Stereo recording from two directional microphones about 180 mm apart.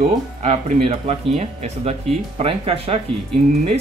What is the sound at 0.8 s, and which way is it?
Speech, 35° right (ahead or behind).